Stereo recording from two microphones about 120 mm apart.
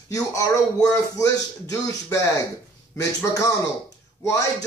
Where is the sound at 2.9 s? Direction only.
25° left (ahead or behind).